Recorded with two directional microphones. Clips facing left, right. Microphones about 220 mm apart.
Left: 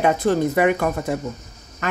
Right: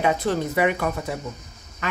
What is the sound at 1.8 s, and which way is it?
Quack, 45° left (ahead or behind).